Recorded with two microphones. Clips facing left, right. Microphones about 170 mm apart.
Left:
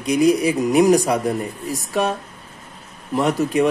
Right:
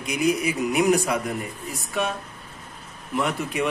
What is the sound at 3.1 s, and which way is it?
Speech, 40° left (ahead or behind).